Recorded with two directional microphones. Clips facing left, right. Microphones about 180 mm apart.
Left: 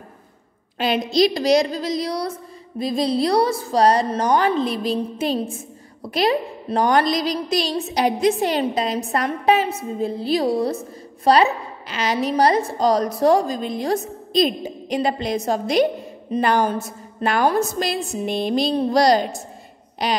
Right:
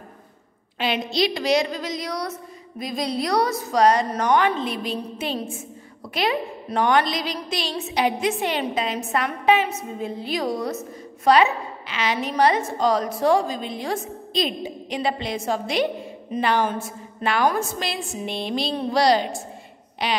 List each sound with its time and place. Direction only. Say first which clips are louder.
0.7 s a woman's voice: left 5 dB; 40° left (ahead or behind)